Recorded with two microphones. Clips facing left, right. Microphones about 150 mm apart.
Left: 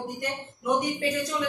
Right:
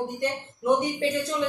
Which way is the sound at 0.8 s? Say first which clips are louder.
Right 2 dB; 30° right (ahead or behind).